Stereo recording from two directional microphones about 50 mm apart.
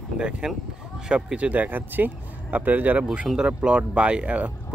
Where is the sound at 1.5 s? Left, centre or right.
Right.